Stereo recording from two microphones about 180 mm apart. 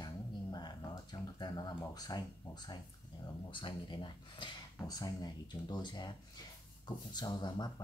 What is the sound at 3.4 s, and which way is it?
Speech, 25° left (ahead or behind).